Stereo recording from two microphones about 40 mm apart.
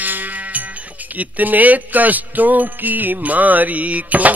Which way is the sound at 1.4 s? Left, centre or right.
Right.